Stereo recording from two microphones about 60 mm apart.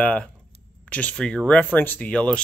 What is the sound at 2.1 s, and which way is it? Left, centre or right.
Speech, centre.